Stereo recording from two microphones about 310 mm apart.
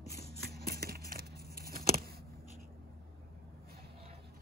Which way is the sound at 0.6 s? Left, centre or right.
Right.